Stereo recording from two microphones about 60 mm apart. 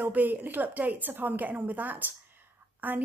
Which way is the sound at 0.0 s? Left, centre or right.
Right.